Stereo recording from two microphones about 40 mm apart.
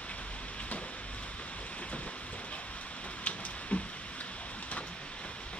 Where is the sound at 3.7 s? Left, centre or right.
Left.